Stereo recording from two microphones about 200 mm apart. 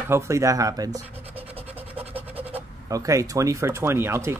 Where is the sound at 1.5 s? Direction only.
10° right (ahead or behind).